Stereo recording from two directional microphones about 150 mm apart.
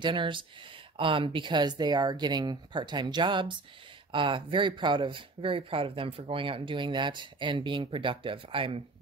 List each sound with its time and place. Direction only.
0.0 s speech: 35° right (ahead or behind)